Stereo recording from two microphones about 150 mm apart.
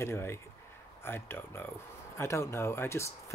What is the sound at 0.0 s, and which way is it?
Speech, 15° left (ahead or behind).